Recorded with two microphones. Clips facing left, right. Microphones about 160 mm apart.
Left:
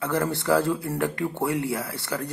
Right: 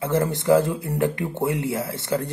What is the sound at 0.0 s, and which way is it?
Speech, 20° right (ahead or behind).